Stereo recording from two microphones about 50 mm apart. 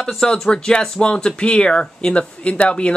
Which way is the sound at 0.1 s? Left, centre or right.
Centre.